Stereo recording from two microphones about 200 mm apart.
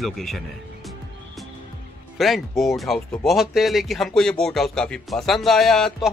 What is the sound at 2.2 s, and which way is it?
Speech, centre (ahead or behind).